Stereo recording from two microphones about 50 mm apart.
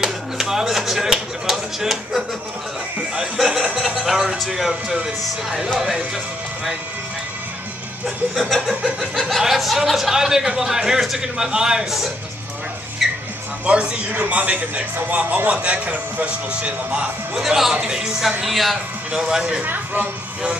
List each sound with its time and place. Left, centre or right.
0.0 s a sound: centre
3.3 s music: centre
5.0 s a man's voice: centre
8.4 s a man's voice: centre
13.0 s a sound: centre
13.7 s a man's voice: centre
14.3 s a man's voice: right
17.4 s speech: centre
18.4 s a man's voice: centre
19.1 s speech: centre
19.6 s speech: right